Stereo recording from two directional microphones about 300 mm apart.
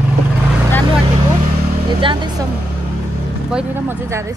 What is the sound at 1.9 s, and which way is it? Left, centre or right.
Speech, centre.